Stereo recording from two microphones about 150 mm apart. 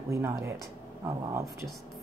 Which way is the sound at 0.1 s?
20° right (ahead or behind).